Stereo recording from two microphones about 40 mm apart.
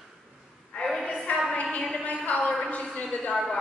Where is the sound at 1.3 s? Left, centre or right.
Left.